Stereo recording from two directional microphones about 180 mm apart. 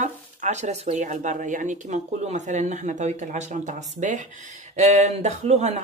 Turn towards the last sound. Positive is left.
turn(degrees=-40)  # may be behind; listen again after turning